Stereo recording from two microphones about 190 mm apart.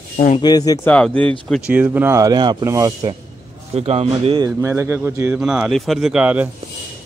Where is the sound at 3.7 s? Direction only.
35° right (ahead or behind).